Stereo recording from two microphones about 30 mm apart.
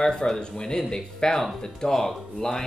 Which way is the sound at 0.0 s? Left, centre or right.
Left.